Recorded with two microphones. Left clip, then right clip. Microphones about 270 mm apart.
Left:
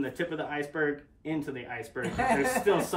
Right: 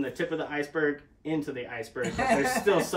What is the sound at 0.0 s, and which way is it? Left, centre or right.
Speech, centre.